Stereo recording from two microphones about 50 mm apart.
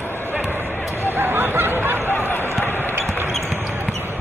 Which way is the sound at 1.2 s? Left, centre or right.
Right.